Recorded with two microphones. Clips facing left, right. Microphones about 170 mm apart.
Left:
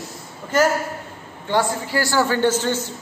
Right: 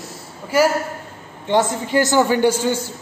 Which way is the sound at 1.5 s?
20° right (ahead or behind).